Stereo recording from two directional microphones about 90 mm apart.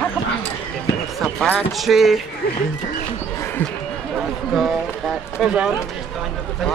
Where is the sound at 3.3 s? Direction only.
25° left (ahead or behind).